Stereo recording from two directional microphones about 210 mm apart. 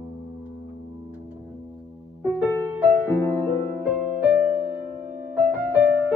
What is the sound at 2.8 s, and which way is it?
Music, 5° right (ahead or behind).